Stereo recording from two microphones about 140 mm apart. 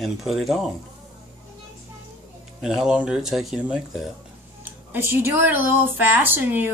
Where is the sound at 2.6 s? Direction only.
5° right (ahead or behind).